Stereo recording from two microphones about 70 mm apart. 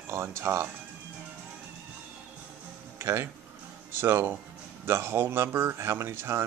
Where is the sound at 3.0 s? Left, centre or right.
Right.